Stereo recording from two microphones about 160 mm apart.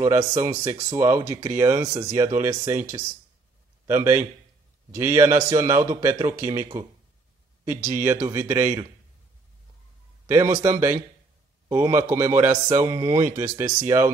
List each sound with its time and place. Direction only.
0.0 s a man's voice: 25° right (ahead or behind)
10.2 s a man's voice: 15° right (ahead or behind)